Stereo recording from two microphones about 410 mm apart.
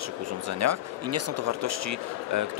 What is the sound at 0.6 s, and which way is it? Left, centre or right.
Speech, right.